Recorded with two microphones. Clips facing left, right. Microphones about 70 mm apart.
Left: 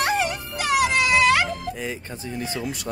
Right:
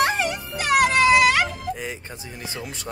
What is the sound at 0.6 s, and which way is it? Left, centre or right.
Music, right.